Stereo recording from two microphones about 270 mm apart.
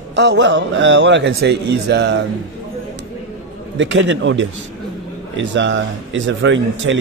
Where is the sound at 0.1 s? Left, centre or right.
Right.